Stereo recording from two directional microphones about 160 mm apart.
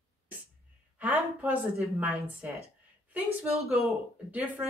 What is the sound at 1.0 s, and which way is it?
Speech, 10° right (ahead or behind).